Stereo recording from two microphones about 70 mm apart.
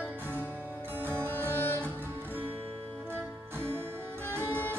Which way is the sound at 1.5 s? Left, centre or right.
Left.